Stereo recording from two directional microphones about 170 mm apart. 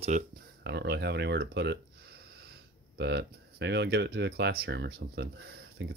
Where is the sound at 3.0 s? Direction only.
80° right.